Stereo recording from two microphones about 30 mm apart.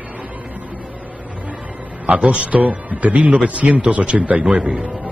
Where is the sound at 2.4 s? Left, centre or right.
Right.